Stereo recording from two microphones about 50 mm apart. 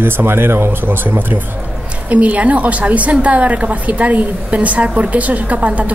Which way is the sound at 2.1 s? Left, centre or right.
Right.